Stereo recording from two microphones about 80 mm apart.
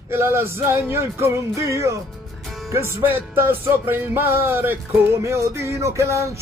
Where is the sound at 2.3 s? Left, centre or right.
Centre.